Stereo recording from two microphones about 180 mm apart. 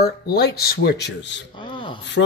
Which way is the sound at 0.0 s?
65° left (ahead or behind).